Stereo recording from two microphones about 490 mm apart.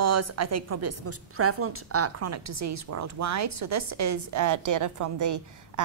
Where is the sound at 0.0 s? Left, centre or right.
Right.